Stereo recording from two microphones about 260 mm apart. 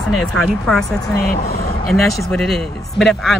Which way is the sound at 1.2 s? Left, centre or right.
Left.